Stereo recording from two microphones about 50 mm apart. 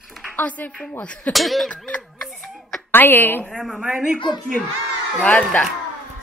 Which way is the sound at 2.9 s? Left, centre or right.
Left.